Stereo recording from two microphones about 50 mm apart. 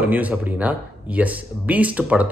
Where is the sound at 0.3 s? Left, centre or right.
Right.